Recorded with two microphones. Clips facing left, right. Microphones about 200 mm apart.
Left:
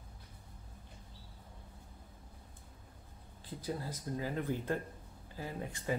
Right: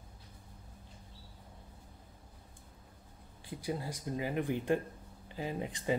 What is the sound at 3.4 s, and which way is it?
Speech, 15° right (ahead or behind).